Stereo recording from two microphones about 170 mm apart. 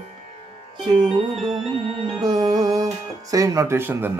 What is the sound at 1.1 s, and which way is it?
Music, centre (ahead or behind).